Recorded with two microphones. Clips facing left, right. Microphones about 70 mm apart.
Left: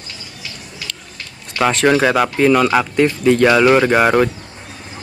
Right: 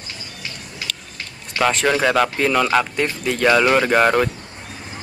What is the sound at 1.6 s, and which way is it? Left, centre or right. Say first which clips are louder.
Speech: left 4 dB; centre.